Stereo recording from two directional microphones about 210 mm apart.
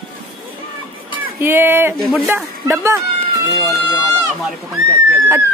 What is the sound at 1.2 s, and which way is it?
Speech, 10° right (ahead or behind).